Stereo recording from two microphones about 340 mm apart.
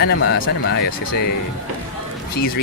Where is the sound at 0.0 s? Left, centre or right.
Left.